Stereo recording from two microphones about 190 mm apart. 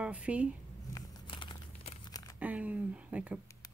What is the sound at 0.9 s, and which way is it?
Crumpling, 25° left (ahead or behind).